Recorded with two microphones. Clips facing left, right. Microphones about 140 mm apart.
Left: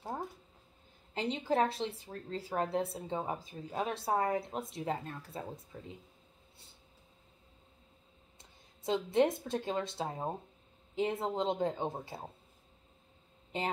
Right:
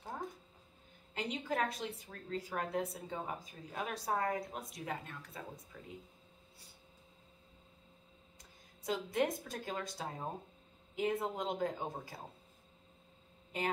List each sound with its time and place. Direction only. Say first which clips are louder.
1.1 s a woman's voice: left 6 dB; 30° left (ahead or behind)
8.4 s a woman's voice: even; 25° left (ahead or behind)
13.5 s a woman's voice: left 2 dB; 30° left (ahead or behind)